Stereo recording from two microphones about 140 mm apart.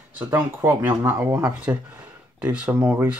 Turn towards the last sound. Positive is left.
turn(degrees=-10)  # may be behind; listen again after turning